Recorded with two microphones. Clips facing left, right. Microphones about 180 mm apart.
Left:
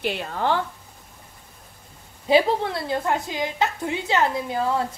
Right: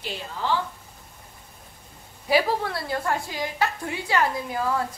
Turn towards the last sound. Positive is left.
turn(degrees=25)  # may be behind; listen again after turning